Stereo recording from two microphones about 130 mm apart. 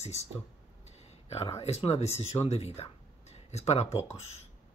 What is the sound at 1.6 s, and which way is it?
Speech, 50° left (ahead or behind).